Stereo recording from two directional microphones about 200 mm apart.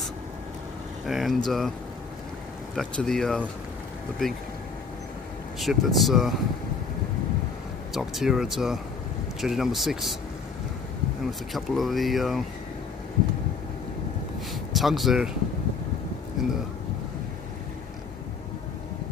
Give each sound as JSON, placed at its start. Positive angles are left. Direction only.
{"t": 1.0, "sound": "speech", "side_deg": 0}
{"t": 2.7, "sound": "speech", "side_deg": 0}
{"t": 5.6, "sound": "speech", "side_deg": 0}
{"t": 7.9, "sound": "speech", "side_deg": 0}
{"t": 11.2, "sound": "speech", "side_deg": 0}
{"t": 14.7, "sound": "speech", "side_deg": 0}
{"t": 16.4, "sound": "speech", "side_deg": 0}